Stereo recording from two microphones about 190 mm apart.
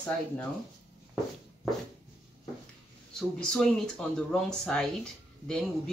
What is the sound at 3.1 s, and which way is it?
Speech, 5° left (ahead or behind).